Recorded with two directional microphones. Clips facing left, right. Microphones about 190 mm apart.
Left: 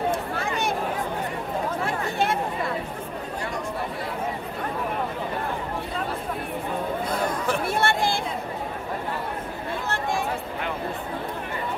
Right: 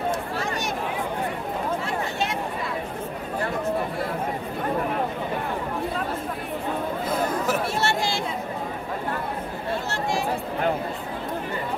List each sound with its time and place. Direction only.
0.4 s a sound: 55° left (ahead or behind)
7.1 s chatter: 5° right (ahead or behind)
7.6 s chatter: 55° left (ahead or behind)